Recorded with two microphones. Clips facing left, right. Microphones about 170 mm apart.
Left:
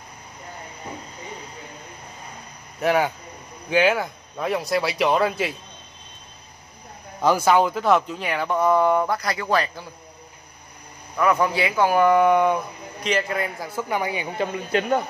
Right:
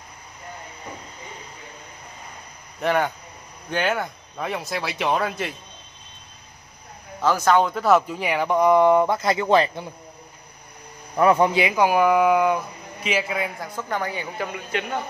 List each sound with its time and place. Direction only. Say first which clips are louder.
2.8 s speech: left 1 dB; 5° left (ahead or behind)
7.2 s speech: left 1 dB; 10° left (ahead or behind); by 9.8 s 25° right (ahead or behind)
11.1 s speech: right 3 dB; 25° right (ahead or behind); by 13.7 s centre (ahead or behind)
13.7 s speech: left 3 dB; 10° left (ahead or behind)
14.4 s speech: left 6 dB; 35° left (ahead or behind)